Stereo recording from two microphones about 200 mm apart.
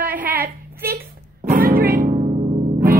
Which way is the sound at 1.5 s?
45° right (ahead or behind).